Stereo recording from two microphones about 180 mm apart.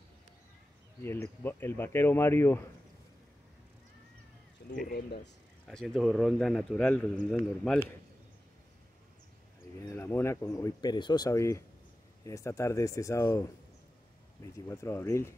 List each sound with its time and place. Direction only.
1.0 s speech: 10° left (ahead or behind)
4.6 s speech: 55° left (ahead or behind)
5.7 s a man's voice: 5° left (ahead or behind)
9.8 s speech: 15° left (ahead or behind)